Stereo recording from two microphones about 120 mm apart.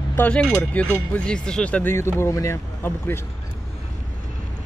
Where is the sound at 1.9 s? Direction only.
20° left (ahead or behind).